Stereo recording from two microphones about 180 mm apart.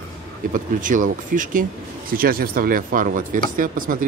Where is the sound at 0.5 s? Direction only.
45° right (ahead or behind).